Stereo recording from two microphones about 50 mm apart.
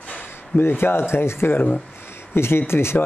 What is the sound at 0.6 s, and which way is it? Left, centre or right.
A man's voice, left.